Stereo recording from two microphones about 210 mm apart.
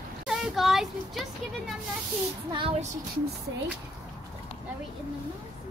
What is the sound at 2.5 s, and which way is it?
Child singing, 25° right (ahead or behind).